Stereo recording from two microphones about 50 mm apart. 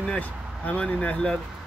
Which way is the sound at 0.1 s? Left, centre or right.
Left.